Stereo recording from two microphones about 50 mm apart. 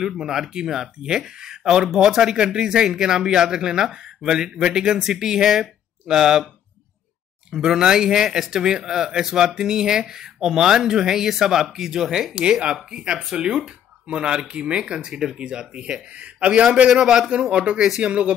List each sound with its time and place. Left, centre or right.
0.0 s speech: centre
7.5 s speech: centre
17.0 s speech: centre
17.3 s speech: right
17.8 s speech: centre